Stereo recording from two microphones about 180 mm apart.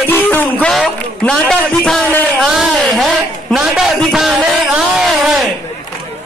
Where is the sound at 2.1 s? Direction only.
10° left (ahead or behind).